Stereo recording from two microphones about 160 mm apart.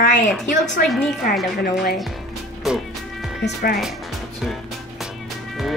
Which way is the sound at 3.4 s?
75° left (ahead or behind).